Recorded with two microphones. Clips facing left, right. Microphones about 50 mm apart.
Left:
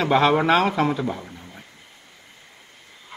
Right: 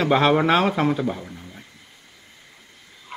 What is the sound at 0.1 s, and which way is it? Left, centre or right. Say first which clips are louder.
Speech: even; centre.